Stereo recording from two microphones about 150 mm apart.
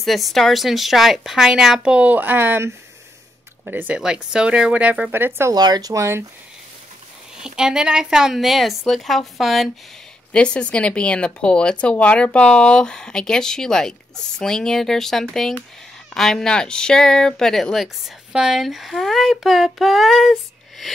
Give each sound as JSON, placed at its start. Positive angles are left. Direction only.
{"t": 0.0, "sound": "speech", "side_deg": 0}
{"t": 5.5, "sound": "speech", "side_deg": -25}
{"t": 7.3, "sound": "speech", "side_deg": -5}